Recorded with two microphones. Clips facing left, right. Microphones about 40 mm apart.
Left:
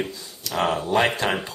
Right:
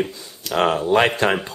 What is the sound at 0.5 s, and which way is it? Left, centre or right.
Speech, right.